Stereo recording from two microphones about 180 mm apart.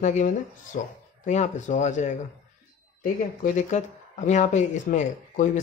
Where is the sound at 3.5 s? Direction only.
45° left (ahead or behind).